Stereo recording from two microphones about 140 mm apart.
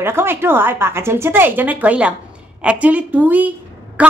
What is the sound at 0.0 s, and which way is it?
Speech, 15° right (ahead or behind).